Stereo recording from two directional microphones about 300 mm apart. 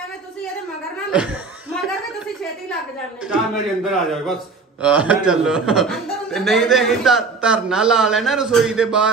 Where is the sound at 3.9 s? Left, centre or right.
Centre.